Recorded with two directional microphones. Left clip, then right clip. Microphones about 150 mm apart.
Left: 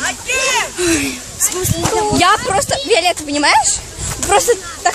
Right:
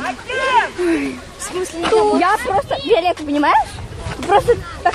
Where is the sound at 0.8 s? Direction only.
55° left (ahead or behind).